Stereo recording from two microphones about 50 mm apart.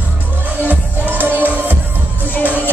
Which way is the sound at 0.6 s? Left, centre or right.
Right.